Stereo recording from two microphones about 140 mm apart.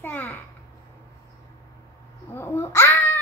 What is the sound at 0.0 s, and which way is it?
Babbling, 10° left (ahead or behind).